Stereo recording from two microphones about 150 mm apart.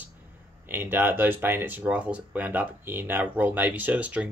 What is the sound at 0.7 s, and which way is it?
Speech, 15° right (ahead or behind).